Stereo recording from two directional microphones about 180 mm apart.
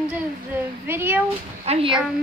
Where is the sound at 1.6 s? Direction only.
30° right (ahead or behind).